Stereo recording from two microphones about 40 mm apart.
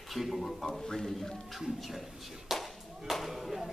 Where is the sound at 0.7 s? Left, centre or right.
Centre.